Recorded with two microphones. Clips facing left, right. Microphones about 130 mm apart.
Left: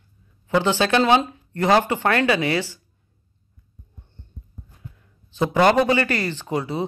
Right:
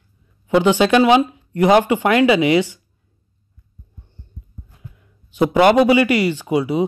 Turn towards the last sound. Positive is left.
turn(degrees=-15)  # may be behind; listen again after turning